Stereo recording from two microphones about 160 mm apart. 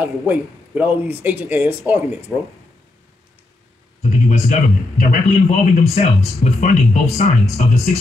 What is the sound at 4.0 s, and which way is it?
A man's voice, 50° left (ahead or behind).